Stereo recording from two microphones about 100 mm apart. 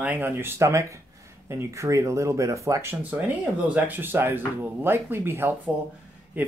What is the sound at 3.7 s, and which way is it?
Speech, 20° right (ahead or behind).